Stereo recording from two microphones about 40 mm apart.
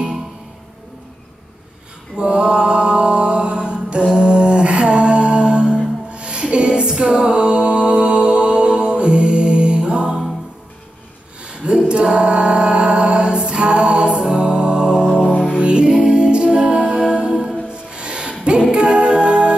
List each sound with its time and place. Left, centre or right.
2.1 s mantra: right
11.4 s a sound: right
12.0 s a capella: centre
14.3 s music: right